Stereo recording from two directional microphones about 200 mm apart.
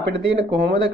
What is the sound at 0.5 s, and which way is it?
Speech, 60° right (ahead or behind).